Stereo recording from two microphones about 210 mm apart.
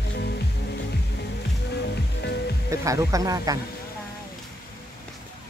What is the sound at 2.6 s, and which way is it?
Speech, 15° right (ahead or behind).